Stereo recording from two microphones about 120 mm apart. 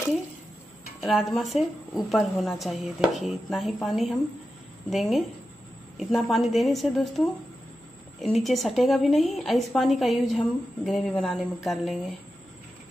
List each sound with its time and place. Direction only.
1.0 s a woman's voice: centre (ahead or behind)